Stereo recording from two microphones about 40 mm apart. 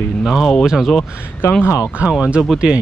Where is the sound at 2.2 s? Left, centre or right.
Right.